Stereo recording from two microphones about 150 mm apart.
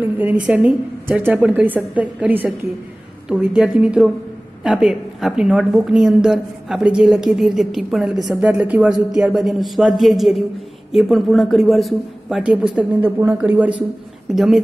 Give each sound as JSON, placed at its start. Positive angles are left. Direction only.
{"t": 0.0, "sound": "a woman's voice", "side_deg": -10}